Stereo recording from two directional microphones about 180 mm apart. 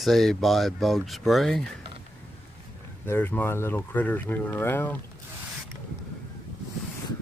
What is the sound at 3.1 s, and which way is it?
Speech, 10° left (ahead or behind).